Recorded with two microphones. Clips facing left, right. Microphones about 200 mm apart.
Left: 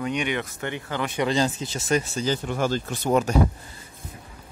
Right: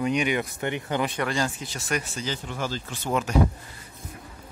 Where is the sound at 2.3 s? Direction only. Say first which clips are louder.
Left 8 dB; 50° left (ahead or behind).